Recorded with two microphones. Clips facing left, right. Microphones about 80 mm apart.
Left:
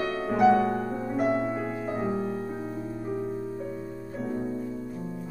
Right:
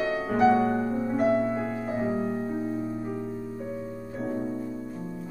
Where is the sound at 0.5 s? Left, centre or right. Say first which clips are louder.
Right 1 dB; right.